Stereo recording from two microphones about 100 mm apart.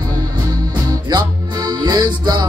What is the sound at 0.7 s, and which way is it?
Music, 45° right (ahead or behind).